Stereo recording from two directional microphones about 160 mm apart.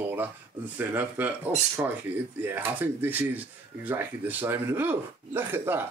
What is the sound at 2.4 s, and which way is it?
Speech, 10° right (ahead or behind).